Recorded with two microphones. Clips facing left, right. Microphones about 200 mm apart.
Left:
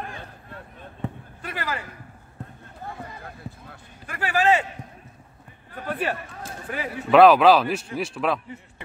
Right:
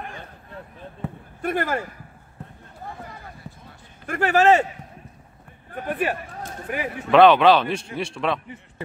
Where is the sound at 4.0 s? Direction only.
45° right (ahead or behind).